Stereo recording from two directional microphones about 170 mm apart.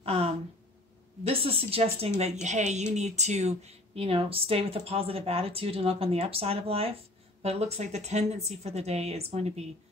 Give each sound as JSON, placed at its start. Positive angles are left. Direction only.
{"t": 0.0, "sound": "gasp", "side_deg": -35}
{"t": 1.2, "sound": "speech", "side_deg": -35}